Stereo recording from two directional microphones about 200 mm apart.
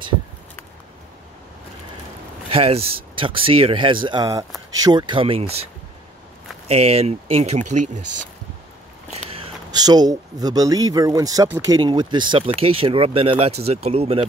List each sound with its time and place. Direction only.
2.5 s speech: 30° right (ahead or behind)
6.7 s speech: 30° right (ahead or behind)